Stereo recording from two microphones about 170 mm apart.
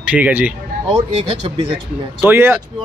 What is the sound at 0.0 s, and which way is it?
Speech, 10° right (ahead or behind).